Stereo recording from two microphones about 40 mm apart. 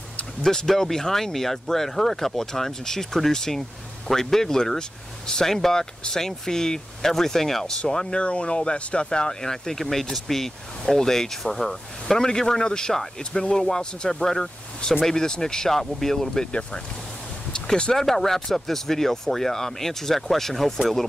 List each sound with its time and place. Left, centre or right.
0.4 s speech: centre
7.8 s speech: left
17.9 s speech: centre